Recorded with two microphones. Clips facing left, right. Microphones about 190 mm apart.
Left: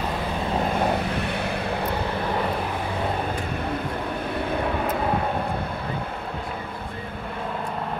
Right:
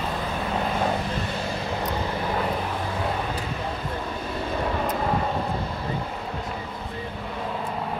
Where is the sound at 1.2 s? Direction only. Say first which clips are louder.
Left 2 dB; 65° left (ahead or behind).